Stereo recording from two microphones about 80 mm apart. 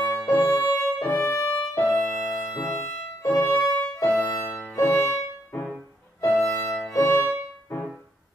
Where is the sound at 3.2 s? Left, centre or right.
Left.